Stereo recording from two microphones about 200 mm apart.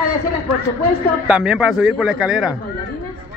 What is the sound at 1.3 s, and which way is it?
Speech, 5° right (ahead or behind).